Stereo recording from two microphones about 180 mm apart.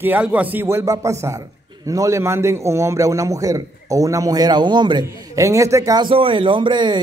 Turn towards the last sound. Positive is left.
turn(degrees=-25)  # may be behind; listen again after turning